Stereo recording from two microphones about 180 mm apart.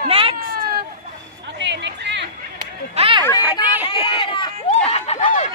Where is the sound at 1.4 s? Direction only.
75° right (ahead or behind).